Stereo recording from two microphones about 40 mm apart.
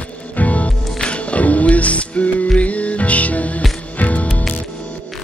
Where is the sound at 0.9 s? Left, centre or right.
Left.